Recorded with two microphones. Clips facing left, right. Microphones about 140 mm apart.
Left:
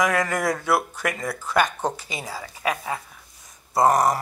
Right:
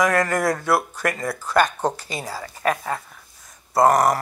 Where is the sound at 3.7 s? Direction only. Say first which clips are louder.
Right 2 dB; 5° left (ahead or behind).